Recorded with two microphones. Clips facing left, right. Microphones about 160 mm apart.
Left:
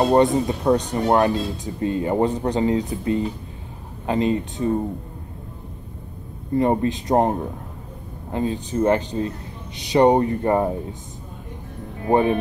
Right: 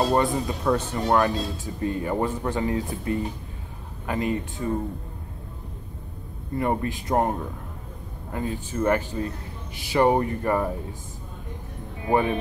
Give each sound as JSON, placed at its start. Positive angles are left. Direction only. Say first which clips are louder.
{"t": 0.0, "sound": "speech", "louder": "left 6 dB", "side_deg": 20}
{"t": 6.5, "sound": "speech", "louder": "left 6 dB", "side_deg": 25}
{"t": 12.1, "sound": "speech", "louder": "left 4 dB", "side_deg": 20}